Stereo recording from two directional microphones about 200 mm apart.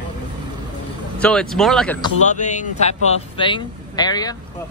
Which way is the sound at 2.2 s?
35° left (ahead or behind).